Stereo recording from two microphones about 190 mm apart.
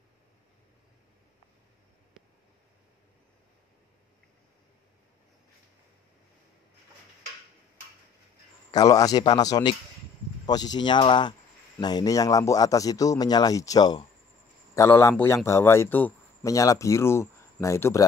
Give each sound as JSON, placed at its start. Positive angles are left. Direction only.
{"t": 8.7, "sound": "speech", "side_deg": 20}